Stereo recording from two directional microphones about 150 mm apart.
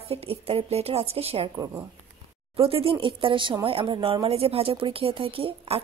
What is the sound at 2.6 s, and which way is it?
Speech, 40° right (ahead or behind).